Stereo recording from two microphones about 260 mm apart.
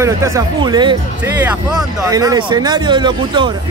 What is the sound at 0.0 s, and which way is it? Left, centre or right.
Speech, centre.